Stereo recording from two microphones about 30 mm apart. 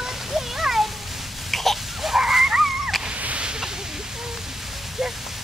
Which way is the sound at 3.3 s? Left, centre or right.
Right.